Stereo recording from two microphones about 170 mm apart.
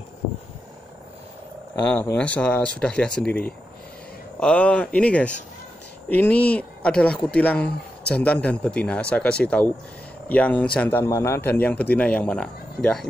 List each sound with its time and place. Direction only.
1.8 s speech: 10° left (ahead or behind)